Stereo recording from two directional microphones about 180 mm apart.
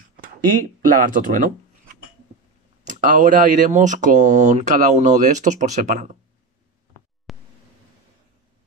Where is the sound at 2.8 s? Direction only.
45° right (ahead or behind).